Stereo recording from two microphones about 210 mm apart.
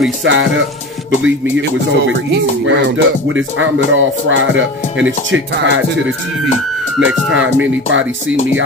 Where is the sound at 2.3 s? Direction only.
60° right (ahead or behind).